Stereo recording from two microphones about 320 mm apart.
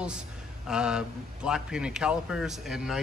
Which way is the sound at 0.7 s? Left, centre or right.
Centre.